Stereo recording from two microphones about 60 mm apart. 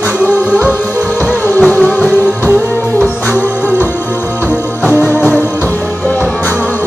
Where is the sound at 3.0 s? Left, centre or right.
Centre.